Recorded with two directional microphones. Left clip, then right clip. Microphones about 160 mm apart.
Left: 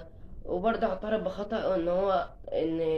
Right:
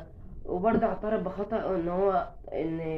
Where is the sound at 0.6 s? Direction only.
30° left (ahead or behind).